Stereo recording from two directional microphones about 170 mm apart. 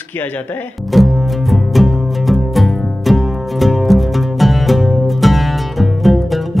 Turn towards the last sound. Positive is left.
turn(degrees=0)  # may be behind; listen again after turning